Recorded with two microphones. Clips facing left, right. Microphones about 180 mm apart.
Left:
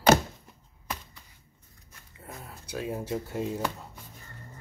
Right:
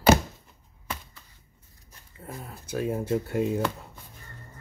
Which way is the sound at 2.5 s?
50° right (ahead or behind).